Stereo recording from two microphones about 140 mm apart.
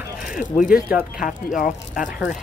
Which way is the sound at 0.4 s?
70° left (ahead or behind).